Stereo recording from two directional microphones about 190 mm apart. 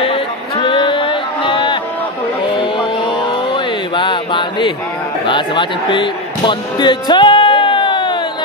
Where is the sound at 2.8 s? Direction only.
25° left (ahead or behind).